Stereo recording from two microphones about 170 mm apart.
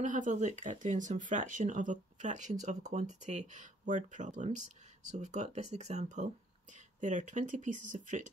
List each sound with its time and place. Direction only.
0.0 s speech: 45° right (ahead or behind)